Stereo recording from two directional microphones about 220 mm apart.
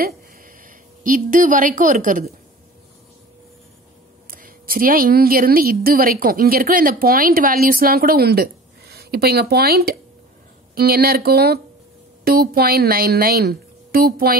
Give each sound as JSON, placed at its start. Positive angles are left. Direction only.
{"t": 0.0, "sound": "a woman's voice", "side_deg": -40}
{"t": 4.3, "sound": "a woman's voice", "side_deg": -40}